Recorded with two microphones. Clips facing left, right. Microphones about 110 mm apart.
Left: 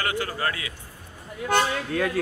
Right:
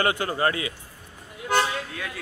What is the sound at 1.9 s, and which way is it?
Music, 50° left (ahead or behind).